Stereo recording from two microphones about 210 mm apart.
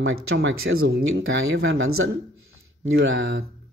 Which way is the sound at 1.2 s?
70° right (ahead or behind).